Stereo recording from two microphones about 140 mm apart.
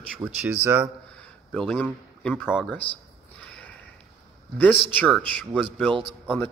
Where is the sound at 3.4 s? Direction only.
10° left (ahead or behind).